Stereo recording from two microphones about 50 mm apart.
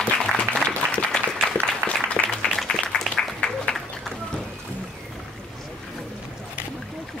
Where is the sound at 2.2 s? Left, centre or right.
Centre.